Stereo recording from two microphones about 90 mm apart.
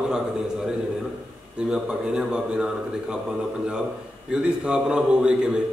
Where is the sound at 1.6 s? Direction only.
10° right (ahead or behind).